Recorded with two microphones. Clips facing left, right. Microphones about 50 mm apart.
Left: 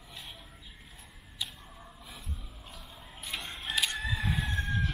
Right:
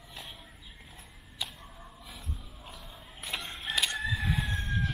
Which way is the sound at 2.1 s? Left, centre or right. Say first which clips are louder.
Right 2 dB; centre.